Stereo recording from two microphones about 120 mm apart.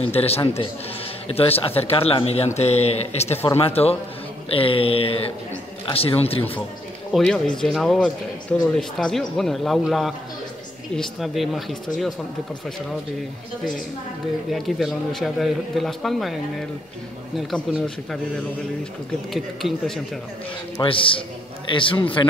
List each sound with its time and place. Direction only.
0.1 s speech: 55° left (ahead or behind)
3.4 s a sound: 55° left (ahead or behind)
7.1 s a man's voice: 5° left (ahead or behind)
14.5 s a man's voice: centre (ahead or behind)
17.4 s a man's voice: 5° left (ahead or behind)
19.3 s a man's voice: centre (ahead or behind)
20.8 s a sound: 45° left (ahead or behind)